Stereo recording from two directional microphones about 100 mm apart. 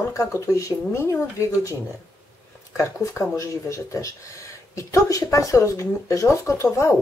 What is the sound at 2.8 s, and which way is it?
Speech, 30° left (ahead or behind).